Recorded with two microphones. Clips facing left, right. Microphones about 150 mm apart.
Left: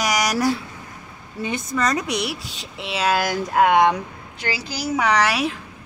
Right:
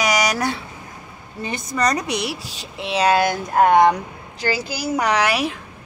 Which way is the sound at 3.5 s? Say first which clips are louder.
Right 2 dB; 40° right (ahead or behind).